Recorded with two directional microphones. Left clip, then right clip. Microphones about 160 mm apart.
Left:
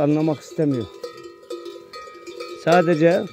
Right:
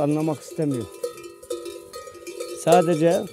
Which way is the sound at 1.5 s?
Centre (ahead or behind).